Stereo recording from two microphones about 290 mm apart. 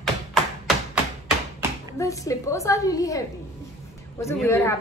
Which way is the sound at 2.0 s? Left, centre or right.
Centre.